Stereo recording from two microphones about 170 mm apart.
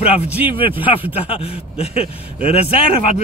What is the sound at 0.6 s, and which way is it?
Speech, 30° left (ahead or behind).